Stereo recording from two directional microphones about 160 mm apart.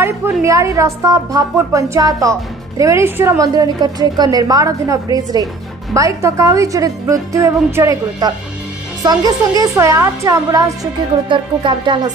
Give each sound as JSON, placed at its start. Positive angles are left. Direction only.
{"t": 0.0, "sound": "a woman's voice", "side_deg": -15}